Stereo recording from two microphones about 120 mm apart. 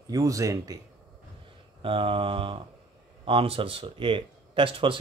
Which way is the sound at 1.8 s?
50° right (ahead or behind).